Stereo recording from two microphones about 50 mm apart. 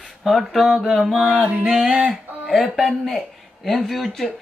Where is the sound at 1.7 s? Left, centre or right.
Centre.